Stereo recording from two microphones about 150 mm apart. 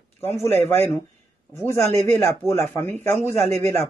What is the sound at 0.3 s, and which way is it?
Speech, 45° right (ahead or behind).